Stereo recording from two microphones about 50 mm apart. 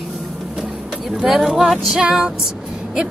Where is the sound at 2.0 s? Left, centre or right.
Centre.